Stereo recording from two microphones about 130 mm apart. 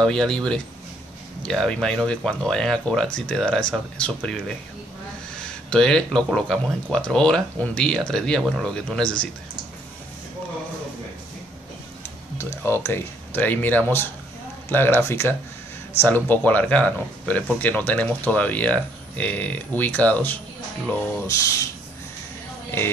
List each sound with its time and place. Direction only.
0.0 s speech: 5° left (ahead or behind)
12.6 s speech: 20° left (ahead or behind)
21.3 s speech: 25° left (ahead or behind)